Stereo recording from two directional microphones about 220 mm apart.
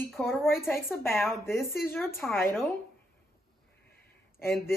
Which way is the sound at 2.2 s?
10° left (ahead or behind).